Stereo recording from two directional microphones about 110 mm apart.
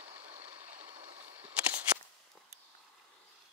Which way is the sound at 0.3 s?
65° right (ahead or behind).